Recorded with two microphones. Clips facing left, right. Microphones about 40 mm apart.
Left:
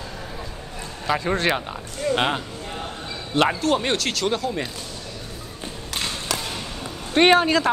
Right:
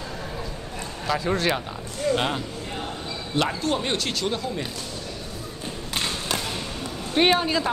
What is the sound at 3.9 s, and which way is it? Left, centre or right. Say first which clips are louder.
Speech: left 3 dB; left.